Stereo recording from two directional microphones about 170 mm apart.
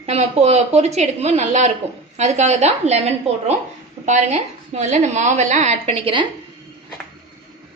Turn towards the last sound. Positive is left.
turn(degrees=-30)  # may be behind; listen again after turning